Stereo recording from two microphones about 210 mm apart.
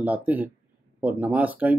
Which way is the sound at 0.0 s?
5° right (ahead or behind).